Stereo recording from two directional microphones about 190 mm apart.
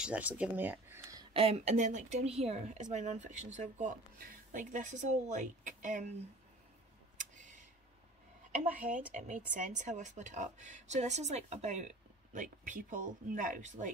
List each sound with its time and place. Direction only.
0.0 s speech: 5° right (ahead or behind)
1.3 s speech: 30° right (ahead or behind)
8.5 s a woman's voice: 45° right (ahead or behind)